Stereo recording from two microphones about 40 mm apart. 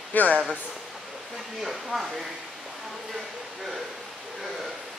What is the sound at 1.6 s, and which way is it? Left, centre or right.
Speech, centre.